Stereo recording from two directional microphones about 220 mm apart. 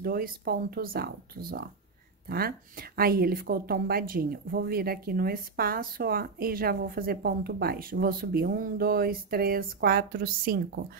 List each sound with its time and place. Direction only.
0.0 s a woman's voice: 45° right (ahead or behind)